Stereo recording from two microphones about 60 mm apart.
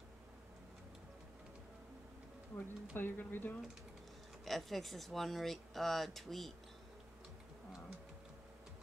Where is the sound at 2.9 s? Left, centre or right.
Left.